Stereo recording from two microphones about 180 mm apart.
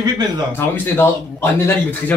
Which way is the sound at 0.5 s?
10° left (ahead or behind).